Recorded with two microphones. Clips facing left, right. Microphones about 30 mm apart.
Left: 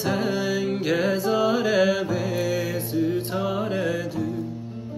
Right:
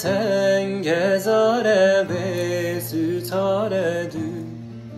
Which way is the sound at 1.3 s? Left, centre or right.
Centre.